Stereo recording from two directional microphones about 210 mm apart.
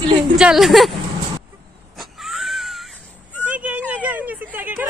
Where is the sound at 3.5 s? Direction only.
5° right (ahead or behind).